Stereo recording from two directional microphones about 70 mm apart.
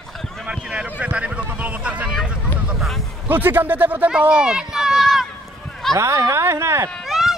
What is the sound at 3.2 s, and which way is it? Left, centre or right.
A man's voice, right.